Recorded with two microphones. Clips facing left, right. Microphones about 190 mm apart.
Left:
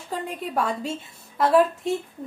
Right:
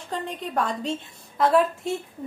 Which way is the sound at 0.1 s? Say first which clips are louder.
Left 1 dB; 5° left (ahead or behind).